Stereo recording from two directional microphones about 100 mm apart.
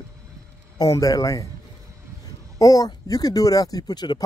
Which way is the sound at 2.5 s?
35° left (ahead or behind).